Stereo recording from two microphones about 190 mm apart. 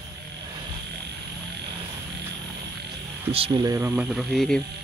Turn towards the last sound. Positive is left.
turn(degrees=0)  # may be behind; listen again after turning